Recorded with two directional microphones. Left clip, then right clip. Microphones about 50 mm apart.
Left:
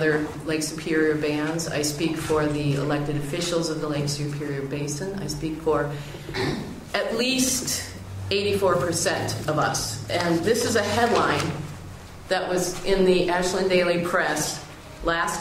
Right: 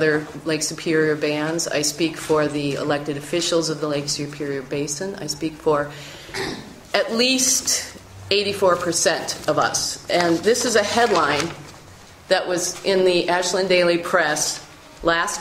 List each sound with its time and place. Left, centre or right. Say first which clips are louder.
0.0 s a woman's voice: right 3 dB; right